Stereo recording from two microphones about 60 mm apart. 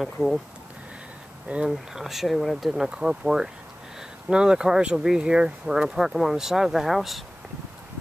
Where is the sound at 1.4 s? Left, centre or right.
Centre.